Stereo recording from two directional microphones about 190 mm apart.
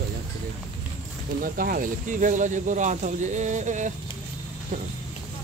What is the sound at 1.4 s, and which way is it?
Speech, 50° right (ahead or behind).